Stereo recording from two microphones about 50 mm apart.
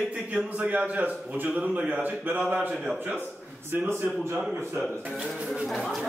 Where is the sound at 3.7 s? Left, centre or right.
Right.